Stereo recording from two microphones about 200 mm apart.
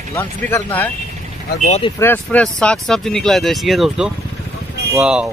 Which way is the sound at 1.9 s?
10° left (ahead or behind).